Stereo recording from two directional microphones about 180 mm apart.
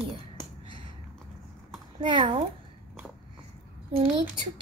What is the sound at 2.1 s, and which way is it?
Speech, 25° right (ahead or behind).